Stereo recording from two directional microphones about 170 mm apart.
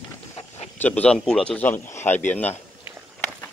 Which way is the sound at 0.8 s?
10° left (ahead or behind).